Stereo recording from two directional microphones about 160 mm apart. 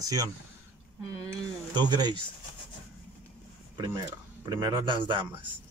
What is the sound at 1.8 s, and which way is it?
Speech, 25° right (ahead or behind).